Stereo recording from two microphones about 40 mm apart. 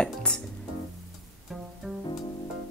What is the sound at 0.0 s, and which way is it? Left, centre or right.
Music, left.